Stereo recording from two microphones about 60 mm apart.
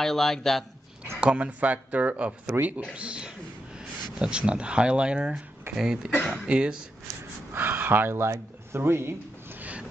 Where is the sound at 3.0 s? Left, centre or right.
Centre.